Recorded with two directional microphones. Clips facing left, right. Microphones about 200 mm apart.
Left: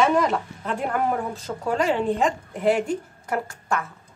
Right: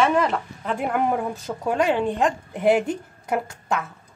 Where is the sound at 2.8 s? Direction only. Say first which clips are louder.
Left 1 dB; 20° right (ahead or behind).